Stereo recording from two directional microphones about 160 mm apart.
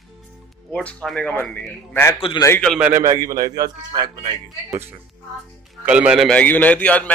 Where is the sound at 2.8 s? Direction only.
15° right (ahead or behind).